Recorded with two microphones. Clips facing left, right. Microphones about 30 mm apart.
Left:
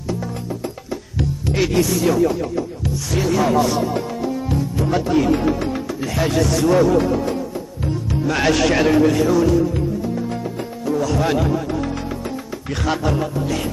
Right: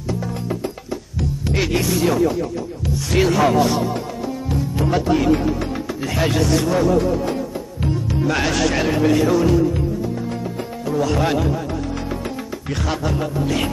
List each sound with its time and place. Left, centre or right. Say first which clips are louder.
1.5 s music: even; centre
2.0 s speech: right 1 dB; centre
3.4 s speech: right 1 dB; centre
3.8 s music: left 2 dB; centre
6.2 s speech: even; centre
6.7 s music: left 5 dB; centre
8.3 s music: left 3 dB; centre
9.0 s speech: even; centre
9.8 s music: left 1 dB; centre
10.9 s speech: even; centre
12.6 s music: left 3 dB; centre